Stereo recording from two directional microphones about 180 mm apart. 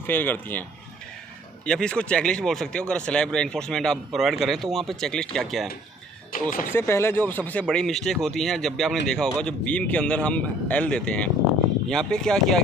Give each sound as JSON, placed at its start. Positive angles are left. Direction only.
{"t": 0.0, "sound": "speech", "side_deg": 10}
{"t": 1.7, "sound": "speech", "side_deg": 5}
{"t": 6.3, "sound": "speech", "side_deg": 50}
{"t": 6.7, "sound": "speech", "side_deg": 15}